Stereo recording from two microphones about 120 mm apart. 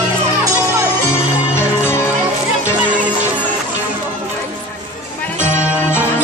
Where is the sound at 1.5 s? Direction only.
20° left (ahead or behind).